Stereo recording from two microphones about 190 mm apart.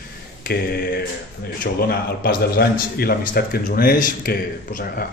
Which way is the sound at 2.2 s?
55° left (ahead or behind).